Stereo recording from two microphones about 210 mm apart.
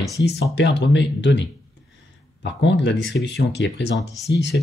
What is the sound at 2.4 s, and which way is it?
Speech, 55° left (ahead or behind).